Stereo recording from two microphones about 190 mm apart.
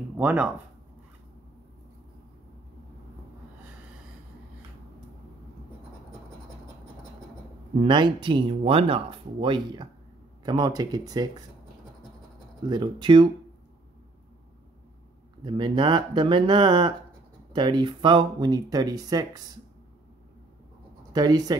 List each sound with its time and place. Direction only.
0.2 s speech: 5° right (ahead or behind)
7.8 s speech: 25° right (ahead or behind)
12.6 s speech: 25° right (ahead or behind)
15.4 s speech: 25° right (ahead or behind)
21.1 s speech: 20° right (ahead or behind)